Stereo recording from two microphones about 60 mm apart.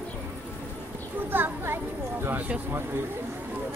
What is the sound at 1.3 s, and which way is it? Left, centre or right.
Speech, right.